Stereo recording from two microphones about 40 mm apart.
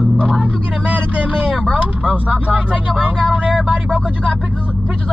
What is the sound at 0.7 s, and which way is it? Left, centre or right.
Speech, right.